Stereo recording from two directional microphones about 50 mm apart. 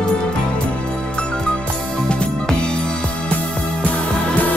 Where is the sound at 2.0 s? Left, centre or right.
Centre.